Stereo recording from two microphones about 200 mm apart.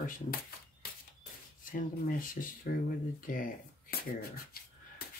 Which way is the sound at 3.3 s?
45° left (ahead or behind).